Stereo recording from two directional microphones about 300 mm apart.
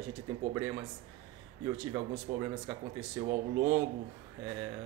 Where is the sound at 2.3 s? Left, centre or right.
Right.